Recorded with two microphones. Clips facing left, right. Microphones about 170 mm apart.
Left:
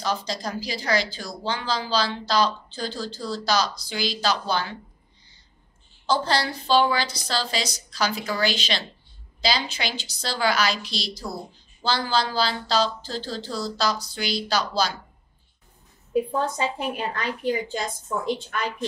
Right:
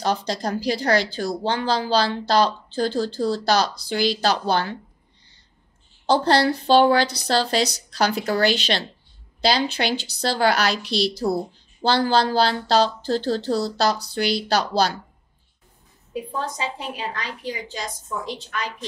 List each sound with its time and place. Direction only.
0.0 s speech: 60° right (ahead or behind)
6.0 s speech: 65° right (ahead or behind)
16.1 s a woman's voice: 55° left (ahead or behind)